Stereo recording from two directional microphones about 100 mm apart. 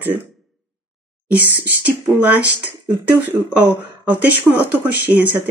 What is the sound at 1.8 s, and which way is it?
Speech, 15° right (ahead or behind).